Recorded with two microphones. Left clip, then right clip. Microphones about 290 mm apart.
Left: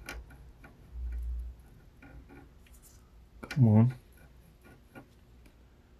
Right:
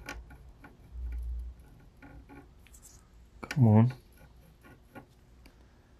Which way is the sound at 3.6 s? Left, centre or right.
Right.